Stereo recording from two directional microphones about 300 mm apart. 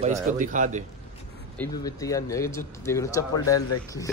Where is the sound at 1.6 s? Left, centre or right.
Centre.